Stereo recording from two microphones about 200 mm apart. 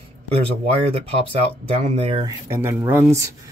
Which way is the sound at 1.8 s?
30° right (ahead or behind).